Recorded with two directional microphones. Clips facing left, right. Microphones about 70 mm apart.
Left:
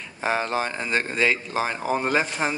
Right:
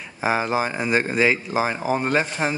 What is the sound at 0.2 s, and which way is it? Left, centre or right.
Speech, centre.